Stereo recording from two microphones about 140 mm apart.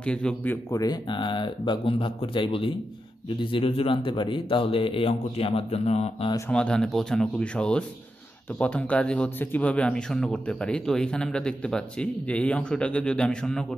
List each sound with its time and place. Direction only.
0.0 s a man's voice: 5° left (ahead or behind); by 6.3 s 50° left (ahead or behind)
6.5 s speech: 5° left (ahead or behind)